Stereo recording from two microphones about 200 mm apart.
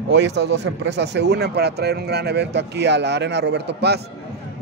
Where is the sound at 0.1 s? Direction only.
60° right (ahead or behind).